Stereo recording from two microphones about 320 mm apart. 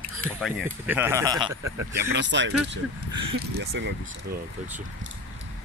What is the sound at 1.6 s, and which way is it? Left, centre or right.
Speech, right.